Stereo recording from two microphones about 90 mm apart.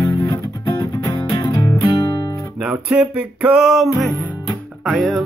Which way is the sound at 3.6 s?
Centre (ahead or behind).